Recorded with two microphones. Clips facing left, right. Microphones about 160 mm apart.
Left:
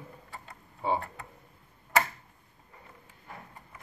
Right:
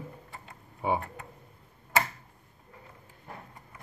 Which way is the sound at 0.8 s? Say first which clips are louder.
Right 1 dB; 10° right (ahead or behind).